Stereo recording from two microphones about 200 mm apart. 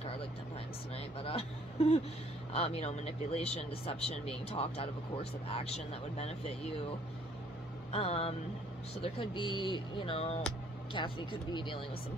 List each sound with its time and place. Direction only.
0.9 s speech: 30° left (ahead or behind)
7.9 s speech: 30° left (ahead or behind)